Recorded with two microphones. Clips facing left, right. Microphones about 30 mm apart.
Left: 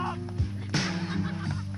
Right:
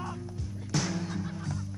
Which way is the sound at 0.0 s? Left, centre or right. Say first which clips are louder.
Left 6 dB; left.